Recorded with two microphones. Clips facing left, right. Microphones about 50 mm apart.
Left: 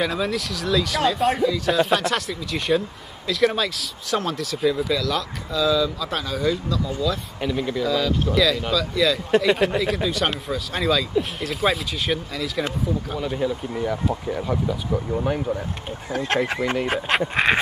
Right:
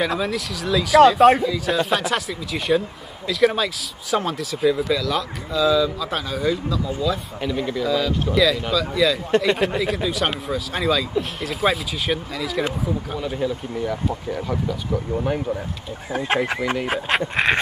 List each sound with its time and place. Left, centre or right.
0.0 s speech: centre
7.4 s speech: centre